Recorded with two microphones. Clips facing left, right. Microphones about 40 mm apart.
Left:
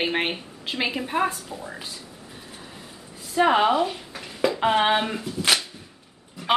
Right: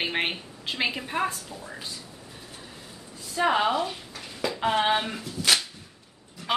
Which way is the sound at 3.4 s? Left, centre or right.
Centre.